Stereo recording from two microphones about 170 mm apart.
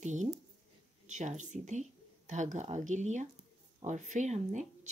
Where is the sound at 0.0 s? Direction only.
45° right (ahead or behind).